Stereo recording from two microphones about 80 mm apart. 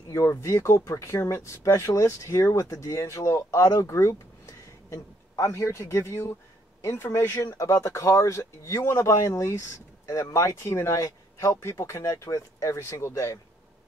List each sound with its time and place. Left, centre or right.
0.1 s speech: left
7.4 s speech: left